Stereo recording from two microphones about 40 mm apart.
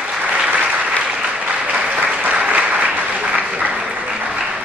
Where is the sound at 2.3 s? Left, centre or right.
Right.